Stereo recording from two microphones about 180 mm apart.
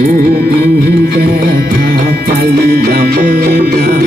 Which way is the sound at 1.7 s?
50° right (ahead or behind).